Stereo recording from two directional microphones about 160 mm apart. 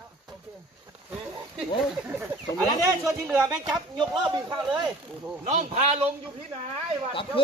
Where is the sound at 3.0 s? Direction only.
20° right (ahead or behind).